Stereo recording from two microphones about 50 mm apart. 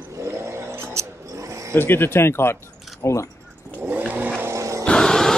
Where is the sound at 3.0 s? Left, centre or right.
Left.